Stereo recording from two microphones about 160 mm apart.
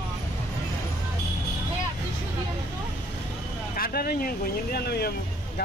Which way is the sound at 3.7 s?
65° left (ahead or behind).